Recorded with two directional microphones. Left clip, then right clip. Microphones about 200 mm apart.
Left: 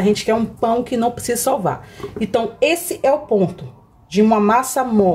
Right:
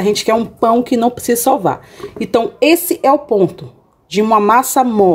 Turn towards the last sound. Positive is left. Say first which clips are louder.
# right 5 dB
turn(degrees=-40)  # may be behind; listen again after turning